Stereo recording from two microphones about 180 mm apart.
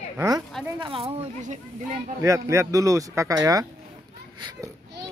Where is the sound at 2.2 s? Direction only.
15° right (ahead or behind).